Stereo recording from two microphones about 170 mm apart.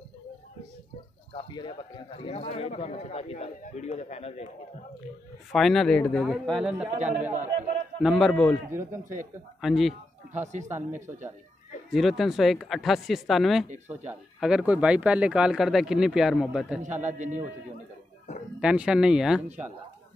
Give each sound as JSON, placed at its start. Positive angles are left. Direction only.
{"t": 1.3, "sound": "a man's voice", "side_deg": 25}
{"t": 5.5, "sound": "speech", "side_deg": 0}
{"t": 7.0, "sound": "a man's voice", "side_deg": -45}
{"t": 8.0, "sound": "speech", "side_deg": -5}
{"t": 9.6, "sound": "speech", "side_deg": 0}
{"t": 10.3, "sound": "a man's voice", "side_deg": -45}
{"t": 11.9, "sound": "speech", "side_deg": 0}
{"t": 13.8, "sound": "speech", "side_deg": -10}
{"t": 16.8, "sound": "a man's voice", "side_deg": -45}
{"t": 18.6, "sound": "speech", "side_deg": -5}
{"t": 19.4, "sound": "speech", "side_deg": -40}